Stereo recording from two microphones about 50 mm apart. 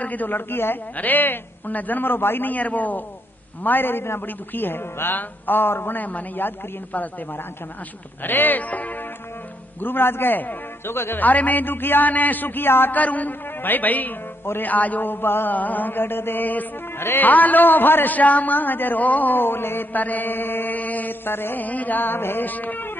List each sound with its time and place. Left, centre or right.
0.0 s a man's voice: left
0.9 s a man's voice: left
3.6 s a man's voice: left
8.2 s a man's voice: left
9.8 s a man's voice: left
11.1 s a man's voice: left
12.9 s a man's voice: left
15.5 s a man's voice: left
17.0 s a man's voice: left
17.3 s a man's voice: left
21.6 s a man's voice: left
22.5 s a man's voice: left